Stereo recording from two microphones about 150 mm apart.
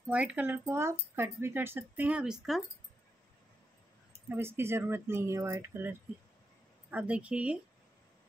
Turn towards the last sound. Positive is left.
turn(degrees=-10)  # may be behind; listen again after turning